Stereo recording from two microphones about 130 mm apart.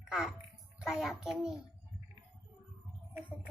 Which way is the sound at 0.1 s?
5° right (ahead or behind).